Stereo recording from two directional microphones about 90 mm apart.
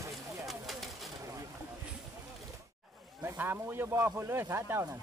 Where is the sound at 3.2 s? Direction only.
25° right (ahead or behind).